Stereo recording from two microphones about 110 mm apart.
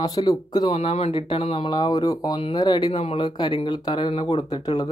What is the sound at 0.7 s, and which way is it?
Speech, 65° left (ahead or behind).